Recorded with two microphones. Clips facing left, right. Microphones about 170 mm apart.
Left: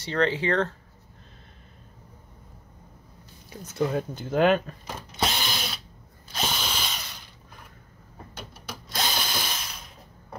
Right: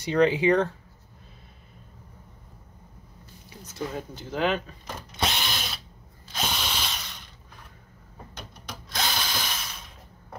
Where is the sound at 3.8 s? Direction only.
55° left (ahead or behind).